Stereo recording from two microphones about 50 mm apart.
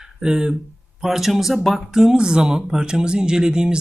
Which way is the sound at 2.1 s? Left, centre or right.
Centre.